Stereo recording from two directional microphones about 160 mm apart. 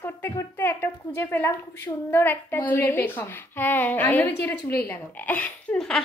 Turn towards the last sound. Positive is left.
turn(degrees=5)  # may be behind; listen again after turning